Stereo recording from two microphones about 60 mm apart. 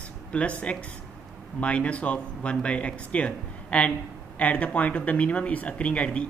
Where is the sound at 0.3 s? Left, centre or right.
Left.